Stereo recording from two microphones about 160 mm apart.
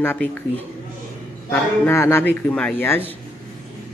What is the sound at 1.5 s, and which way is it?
A man's voice, 15° left (ahead or behind).